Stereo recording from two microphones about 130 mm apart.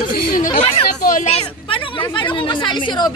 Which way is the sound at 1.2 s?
45° left (ahead or behind).